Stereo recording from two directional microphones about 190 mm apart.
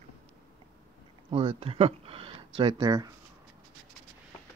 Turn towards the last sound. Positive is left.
turn(degrees=-20)  # may be behind; listen again after turning